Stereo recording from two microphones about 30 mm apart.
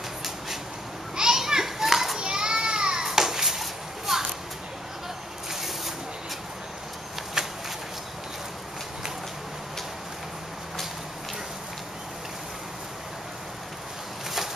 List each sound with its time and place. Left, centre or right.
1.1 s children playing: right
2.1 s children playing: right
3.1 s children playing: centre
7.4 s a sound: centre